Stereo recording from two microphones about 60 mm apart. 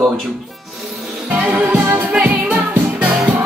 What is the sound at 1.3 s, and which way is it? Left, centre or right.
Music, right.